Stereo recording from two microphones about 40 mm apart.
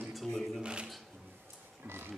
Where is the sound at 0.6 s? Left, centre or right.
Right.